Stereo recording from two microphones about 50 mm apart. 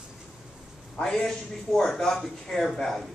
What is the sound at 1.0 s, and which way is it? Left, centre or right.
Speech, centre.